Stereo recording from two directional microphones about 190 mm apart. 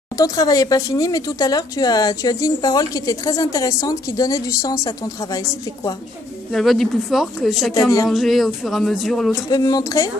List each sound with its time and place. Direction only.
0.2 s speech: 20° left (ahead or behind)
6.5 s speech: centre (ahead or behind)
9.5 s speech: 20° left (ahead or behind)